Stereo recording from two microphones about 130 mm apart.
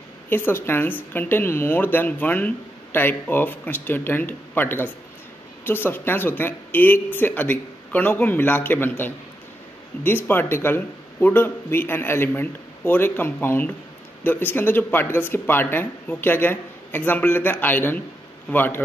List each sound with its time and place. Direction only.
0.3 s speech: 15° left (ahead or behind)